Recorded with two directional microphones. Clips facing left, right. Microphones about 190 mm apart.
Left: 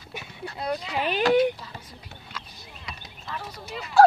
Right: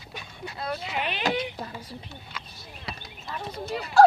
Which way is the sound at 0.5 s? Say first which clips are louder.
Left 3 dB; 20° left (ahead or behind).